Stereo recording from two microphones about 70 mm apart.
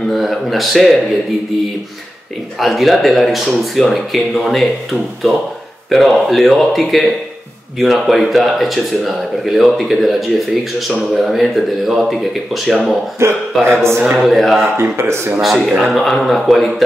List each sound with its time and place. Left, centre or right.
0.1 s speech: centre
2.6 s speech: centre
5.9 s speech: centre
13.2 s speech: right
14.1 s speech: centre
14.6 s speech: right
15.4 s speech: centre